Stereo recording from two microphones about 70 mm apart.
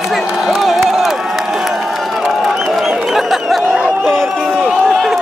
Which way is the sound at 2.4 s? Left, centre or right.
Centre.